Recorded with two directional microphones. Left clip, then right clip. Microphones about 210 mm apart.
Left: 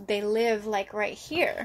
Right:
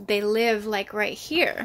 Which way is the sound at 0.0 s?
25° right (ahead or behind).